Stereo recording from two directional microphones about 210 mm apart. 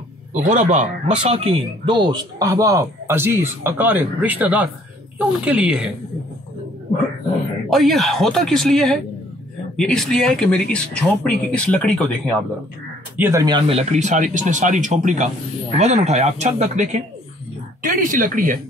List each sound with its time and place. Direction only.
0.3 s speech: 35° right (ahead or behind); by 5.9 s 5° right (ahead or behind)
7.7 s speech: centre (ahead or behind)
13.2 s speech: 15° right (ahead or behind); by 18.6 s 40° right (ahead or behind)